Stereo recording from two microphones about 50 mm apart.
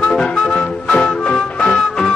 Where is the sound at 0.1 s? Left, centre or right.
Centre.